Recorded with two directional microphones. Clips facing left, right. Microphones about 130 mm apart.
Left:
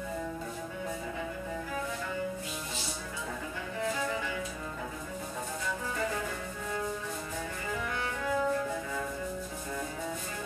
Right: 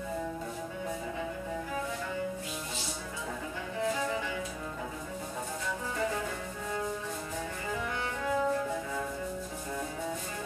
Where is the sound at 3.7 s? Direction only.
25° right (ahead or behind).